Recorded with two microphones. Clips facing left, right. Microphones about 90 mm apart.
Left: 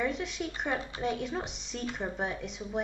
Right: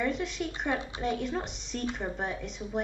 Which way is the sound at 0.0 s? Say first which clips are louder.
Right 2 dB; centre (ahead or behind).